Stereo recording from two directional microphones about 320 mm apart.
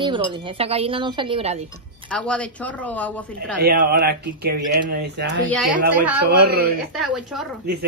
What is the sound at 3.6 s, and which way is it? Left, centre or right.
Speech, right.